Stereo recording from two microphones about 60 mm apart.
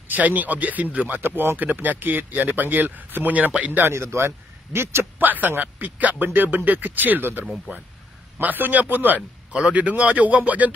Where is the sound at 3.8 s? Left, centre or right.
Right.